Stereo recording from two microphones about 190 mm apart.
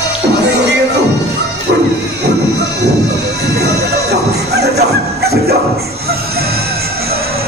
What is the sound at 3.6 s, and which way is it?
Music, 60° right (ahead or behind).